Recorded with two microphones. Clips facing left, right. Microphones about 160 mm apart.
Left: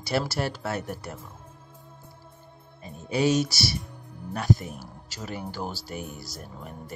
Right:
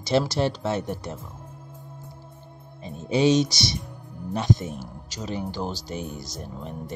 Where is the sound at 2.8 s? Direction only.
20° right (ahead or behind).